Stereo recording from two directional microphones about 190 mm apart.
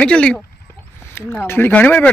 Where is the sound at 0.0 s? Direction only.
5° left (ahead or behind).